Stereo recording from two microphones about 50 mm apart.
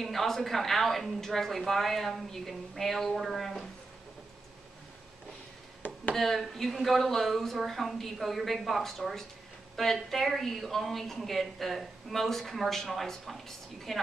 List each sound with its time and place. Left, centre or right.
0.0 s a woman's voice: centre
6.1 s a woman's voice: centre